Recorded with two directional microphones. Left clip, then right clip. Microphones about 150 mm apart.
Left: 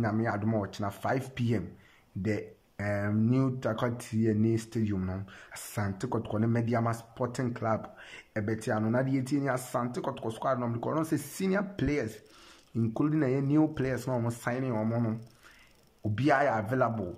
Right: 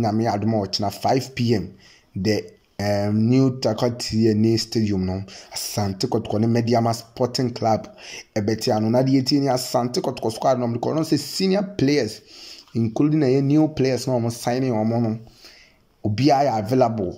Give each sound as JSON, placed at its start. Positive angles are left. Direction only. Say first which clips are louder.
{"t": 0.0, "sound": "speech", "louder": "right 9 dB", "side_deg": -20}
{"t": 14.4, "sound": "speech", "louder": "right 10 dB", "side_deg": -30}